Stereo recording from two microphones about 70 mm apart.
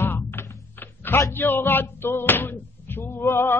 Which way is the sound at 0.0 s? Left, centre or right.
Left.